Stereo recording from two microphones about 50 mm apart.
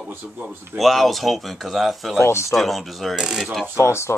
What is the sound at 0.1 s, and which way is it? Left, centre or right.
Speech, right.